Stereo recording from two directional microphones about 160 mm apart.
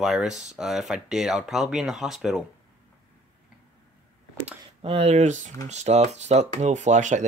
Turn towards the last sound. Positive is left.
turn(degrees=-50)  # may be behind; listen again after turning